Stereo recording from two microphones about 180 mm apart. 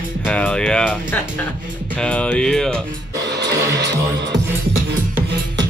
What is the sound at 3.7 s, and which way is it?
Music, 75° right (ahead or behind).